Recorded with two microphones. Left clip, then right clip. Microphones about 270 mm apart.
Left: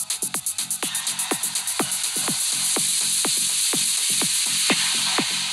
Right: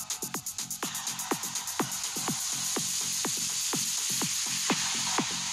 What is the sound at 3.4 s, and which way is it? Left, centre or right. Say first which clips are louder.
Music: left 8 dB; centre.